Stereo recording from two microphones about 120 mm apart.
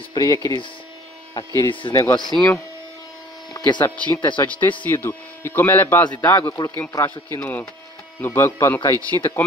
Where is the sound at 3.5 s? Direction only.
40° left (ahead or behind).